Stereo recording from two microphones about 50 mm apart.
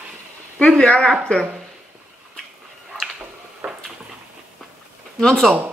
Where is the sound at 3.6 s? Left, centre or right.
Right.